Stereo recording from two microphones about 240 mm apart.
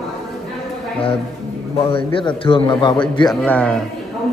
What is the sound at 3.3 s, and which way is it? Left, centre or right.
Speech, centre.